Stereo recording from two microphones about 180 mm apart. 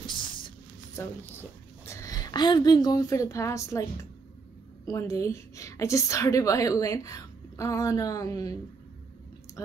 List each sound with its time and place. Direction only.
1.0 s a woman's voice: 15° left (ahead or behind)
4.8 s a woman's voice: 15° left (ahead or behind)